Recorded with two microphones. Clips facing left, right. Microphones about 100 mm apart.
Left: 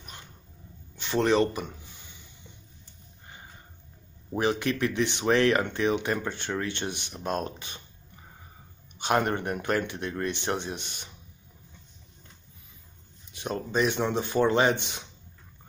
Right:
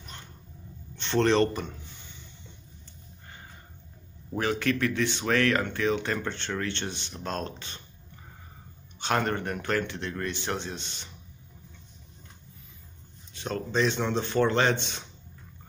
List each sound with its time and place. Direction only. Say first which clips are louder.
0.9 s speech: even; 5° left (ahead or behind)
4.3 s speech: left 1 dB; 20° left (ahead or behind)
9.0 s speech: left 2 dB; 15° left (ahead or behind)
13.3 s speech: even; 15° left (ahead or behind)